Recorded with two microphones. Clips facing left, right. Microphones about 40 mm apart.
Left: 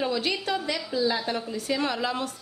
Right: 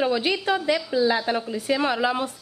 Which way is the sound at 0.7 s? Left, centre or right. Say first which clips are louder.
Right 5 dB; centre.